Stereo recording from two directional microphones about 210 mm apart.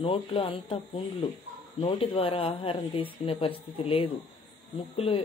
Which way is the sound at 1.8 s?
25° left (ahead or behind).